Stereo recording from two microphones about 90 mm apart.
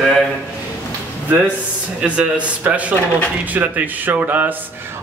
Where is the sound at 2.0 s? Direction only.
15° right (ahead or behind).